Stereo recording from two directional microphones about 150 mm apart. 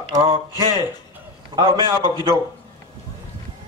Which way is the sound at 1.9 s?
25° left (ahead or behind).